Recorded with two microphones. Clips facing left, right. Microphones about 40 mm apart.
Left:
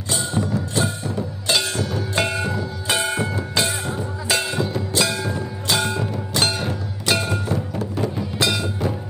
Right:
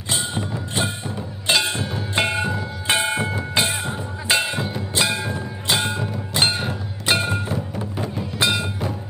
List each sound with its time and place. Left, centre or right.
0.1 s music: right
7.8 s music: centre
8.4 s music: right